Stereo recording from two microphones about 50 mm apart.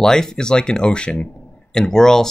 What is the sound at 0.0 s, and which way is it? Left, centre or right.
Speech, centre.